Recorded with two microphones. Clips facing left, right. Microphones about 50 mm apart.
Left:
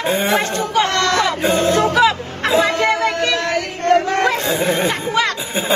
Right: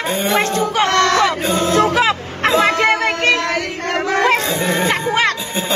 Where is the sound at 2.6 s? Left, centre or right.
Right.